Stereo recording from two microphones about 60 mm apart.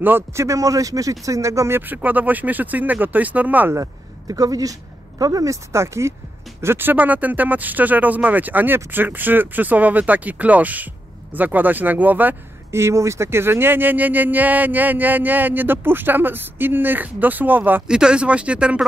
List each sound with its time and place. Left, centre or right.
0.3 s speech: right
1.7 s speech: right
3.7 s speech: right
5.2 s speech: right
6.6 s speech: right
12.7 s speech: right
17.8 s speech: centre